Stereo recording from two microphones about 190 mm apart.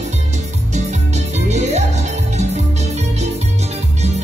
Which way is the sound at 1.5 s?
35° right (ahead or behind).